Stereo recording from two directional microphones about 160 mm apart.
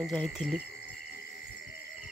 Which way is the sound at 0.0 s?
Centre (ahead or behind).